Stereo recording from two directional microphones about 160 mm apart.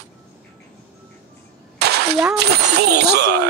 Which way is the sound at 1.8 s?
90° right.